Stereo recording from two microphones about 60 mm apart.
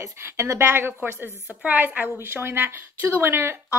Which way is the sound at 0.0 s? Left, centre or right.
Right.